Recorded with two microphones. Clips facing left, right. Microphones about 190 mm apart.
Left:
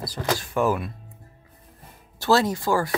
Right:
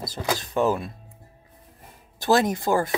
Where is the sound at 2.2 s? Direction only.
20° right (ahead or behind).